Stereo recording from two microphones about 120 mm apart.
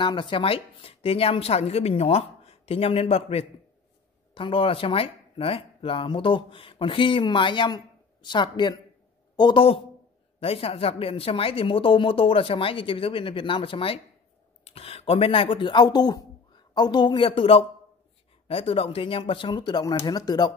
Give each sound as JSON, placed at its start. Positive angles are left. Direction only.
{"t": 0.0, "sound": "speech", "side_deg": 45}
{"t": 4.3, "sound": "speech", "side_deg": 45}